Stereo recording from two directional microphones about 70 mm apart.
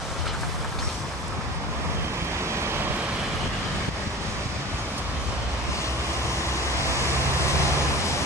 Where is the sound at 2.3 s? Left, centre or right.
Right.